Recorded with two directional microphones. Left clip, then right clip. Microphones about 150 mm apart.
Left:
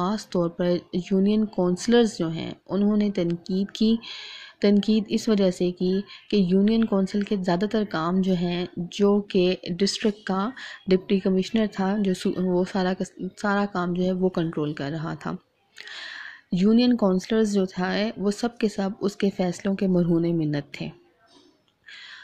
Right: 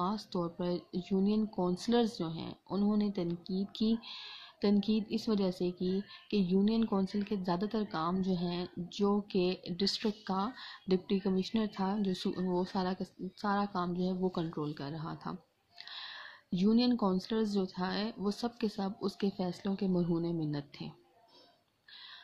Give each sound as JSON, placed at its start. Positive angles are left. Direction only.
{"t": 0.0, "sound": "speech", "side_deg": 25}